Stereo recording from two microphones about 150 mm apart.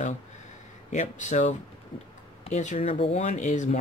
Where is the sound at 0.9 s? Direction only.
55° left (ahead or behind).